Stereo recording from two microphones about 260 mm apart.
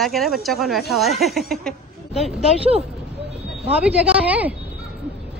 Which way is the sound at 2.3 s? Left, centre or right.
Right.